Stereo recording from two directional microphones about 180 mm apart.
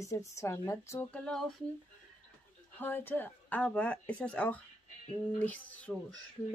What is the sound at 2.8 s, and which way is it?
Speech, 10° left (ahead or behind).